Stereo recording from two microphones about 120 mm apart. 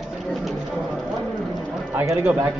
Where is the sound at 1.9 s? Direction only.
20° right (ahead or behind).